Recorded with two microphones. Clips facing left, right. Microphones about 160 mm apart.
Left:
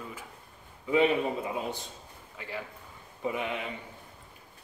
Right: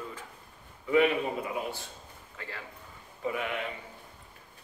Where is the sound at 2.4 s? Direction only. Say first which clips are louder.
Left 4 dB; 15° left (ahead or behind).